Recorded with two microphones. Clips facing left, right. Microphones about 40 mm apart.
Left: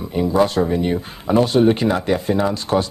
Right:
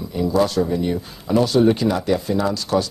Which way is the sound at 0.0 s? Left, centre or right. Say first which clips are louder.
Left 2 dB; left.